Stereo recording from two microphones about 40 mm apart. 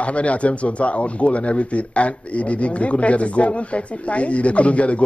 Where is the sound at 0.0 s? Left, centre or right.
Left.